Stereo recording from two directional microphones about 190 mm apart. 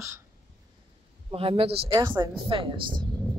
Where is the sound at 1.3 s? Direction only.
30° right (ahead or behind).